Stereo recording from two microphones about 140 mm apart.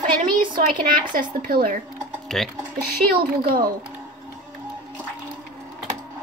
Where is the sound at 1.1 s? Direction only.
90° right.